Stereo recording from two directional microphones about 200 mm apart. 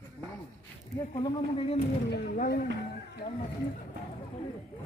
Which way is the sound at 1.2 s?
25° left (ahead or behind).